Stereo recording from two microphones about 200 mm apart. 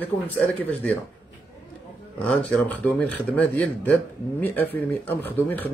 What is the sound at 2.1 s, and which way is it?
Speech, 5° left (ahead or behind).